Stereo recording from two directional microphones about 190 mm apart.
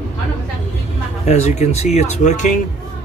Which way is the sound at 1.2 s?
35° left (ahead or behind).